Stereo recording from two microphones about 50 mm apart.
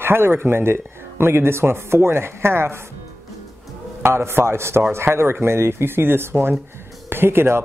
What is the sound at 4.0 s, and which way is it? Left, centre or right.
Speech, right.